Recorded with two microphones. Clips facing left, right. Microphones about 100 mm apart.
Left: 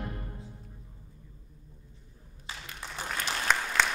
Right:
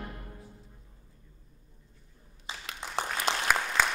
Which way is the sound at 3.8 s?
5° right (ahead or behind).